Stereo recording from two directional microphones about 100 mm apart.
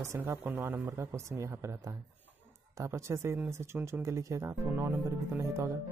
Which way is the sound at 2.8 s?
30° right (ahead or behind).